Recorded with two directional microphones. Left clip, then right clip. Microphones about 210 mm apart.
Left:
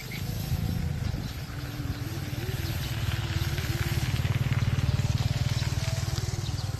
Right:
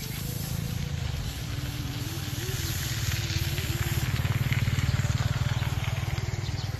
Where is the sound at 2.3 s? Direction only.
40° left (ahead or behind); by 4.1 s 20° left (ahead or behind).